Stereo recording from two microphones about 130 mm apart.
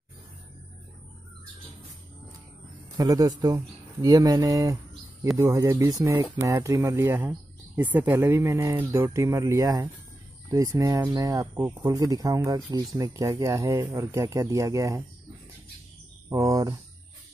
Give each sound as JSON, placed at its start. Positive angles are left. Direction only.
{"t": 3.0, "sound": "speech", "side_deg": -30}
{"t": 16.3, "sound": "speech", "side_deg": -25}